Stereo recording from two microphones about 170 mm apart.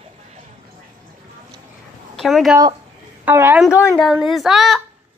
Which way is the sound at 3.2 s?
10° right (ahead or behind).